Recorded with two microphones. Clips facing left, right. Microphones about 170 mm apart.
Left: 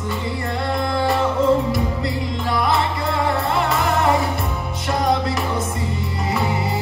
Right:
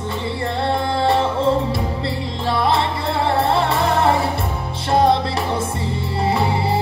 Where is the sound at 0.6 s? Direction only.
30° right (ahead or behind).